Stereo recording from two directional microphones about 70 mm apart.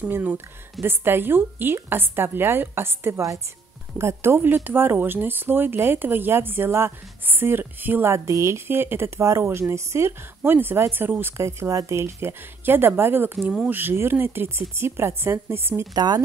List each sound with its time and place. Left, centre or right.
0.1 s speech: right
8.3 s speech: right
8.6 s speech: right
15.9 s speech: right